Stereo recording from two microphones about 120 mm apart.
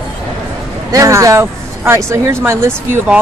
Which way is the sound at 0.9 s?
25° right (ahead or behind).